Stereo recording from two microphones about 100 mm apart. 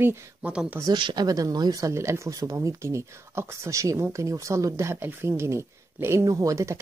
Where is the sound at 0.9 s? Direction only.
45° right (ahead or behind).